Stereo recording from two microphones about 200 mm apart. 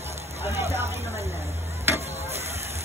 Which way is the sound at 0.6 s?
30° right (ahead or behind).